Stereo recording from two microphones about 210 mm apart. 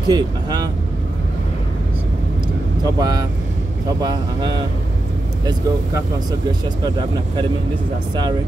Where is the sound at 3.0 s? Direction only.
20° right (ahead or behind).